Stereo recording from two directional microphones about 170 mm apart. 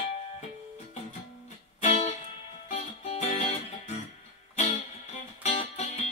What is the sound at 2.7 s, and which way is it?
Music, 35° left (ahead or behind).